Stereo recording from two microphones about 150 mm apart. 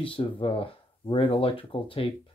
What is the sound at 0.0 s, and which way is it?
Speech, 35° left (ahead or behind).